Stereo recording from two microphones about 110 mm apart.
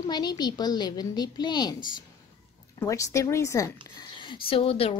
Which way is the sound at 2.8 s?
30° left (ahead or behind).